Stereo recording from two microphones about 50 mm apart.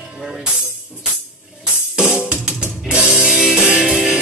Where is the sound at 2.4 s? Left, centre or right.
Centre.